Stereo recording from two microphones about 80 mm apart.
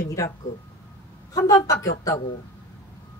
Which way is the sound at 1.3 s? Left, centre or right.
Left.